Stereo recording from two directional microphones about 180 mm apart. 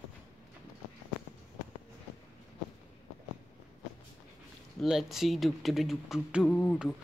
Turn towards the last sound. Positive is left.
turn(degrees=5)  # may be behind; listen again after turning